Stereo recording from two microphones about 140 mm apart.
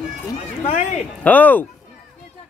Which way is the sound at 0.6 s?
60° left (ahead or behind).